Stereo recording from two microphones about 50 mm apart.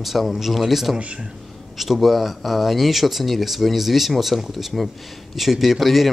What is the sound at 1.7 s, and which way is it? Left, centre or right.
Speech, centre.